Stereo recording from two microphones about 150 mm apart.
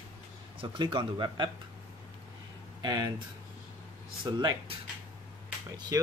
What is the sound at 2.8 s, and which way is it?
Speech, 30° right (ahead or behind).